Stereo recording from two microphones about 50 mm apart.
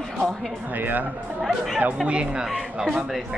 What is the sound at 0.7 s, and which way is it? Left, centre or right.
Speech, right.